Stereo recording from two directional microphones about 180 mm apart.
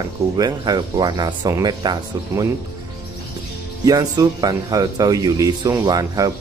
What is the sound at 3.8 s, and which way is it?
Speech, 20° right (ahead or behind).